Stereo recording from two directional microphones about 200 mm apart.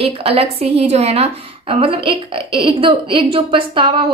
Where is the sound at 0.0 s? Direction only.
30° right (ahead or behind).